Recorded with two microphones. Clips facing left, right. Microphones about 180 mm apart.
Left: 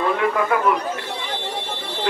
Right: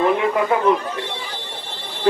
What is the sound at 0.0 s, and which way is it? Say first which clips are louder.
Speech: right 2 dB; 20° right (ahead or behind).